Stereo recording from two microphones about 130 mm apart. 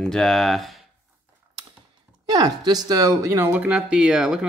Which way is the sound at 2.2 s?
30° right (ahead or behind).